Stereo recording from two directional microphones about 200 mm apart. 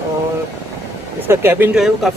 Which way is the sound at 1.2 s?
10° right (ahead or behind).